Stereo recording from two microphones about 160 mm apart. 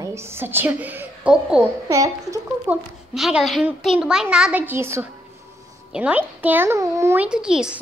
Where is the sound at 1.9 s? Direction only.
20° right (ahead or behind).